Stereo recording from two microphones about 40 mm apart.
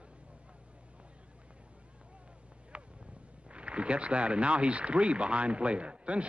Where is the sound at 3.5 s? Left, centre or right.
Right.